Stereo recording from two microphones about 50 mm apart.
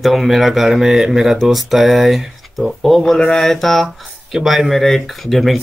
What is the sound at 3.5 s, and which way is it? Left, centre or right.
Speech, centre.